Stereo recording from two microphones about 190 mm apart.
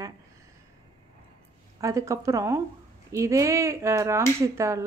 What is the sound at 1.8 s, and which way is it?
Speech, 15° right (ahead or behind).